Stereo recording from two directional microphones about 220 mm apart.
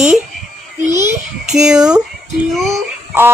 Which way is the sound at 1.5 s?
5° right (ahead or behind).